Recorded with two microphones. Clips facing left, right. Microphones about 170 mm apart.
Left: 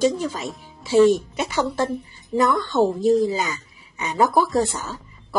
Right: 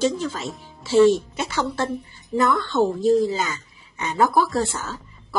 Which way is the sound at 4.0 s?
15° left (ahead or behind).